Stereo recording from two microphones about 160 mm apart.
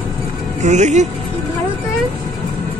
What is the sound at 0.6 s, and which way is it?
Speech, 45° right (ahead or behind).